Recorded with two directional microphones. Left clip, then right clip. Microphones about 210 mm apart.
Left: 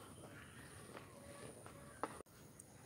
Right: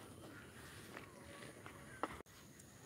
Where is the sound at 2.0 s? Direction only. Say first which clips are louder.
Right 2 dB; 35° right (ahead or behind).